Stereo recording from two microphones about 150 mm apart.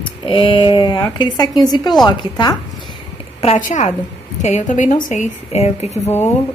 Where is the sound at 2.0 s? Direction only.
25° left (ahead or behind).